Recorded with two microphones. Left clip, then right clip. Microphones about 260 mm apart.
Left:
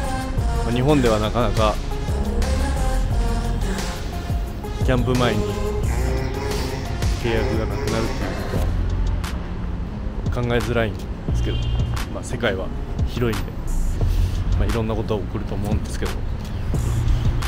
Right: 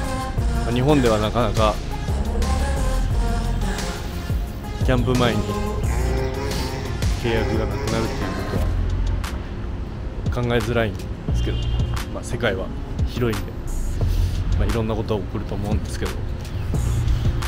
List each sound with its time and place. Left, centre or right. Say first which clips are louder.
0.7 s speech: even; centre
4.8 s speech: even; centre
6.1 s music: right 1 dB; centre
10.3 s speech: even; centre
12.3 s speech: even; centre
14.6 s speech: even; centre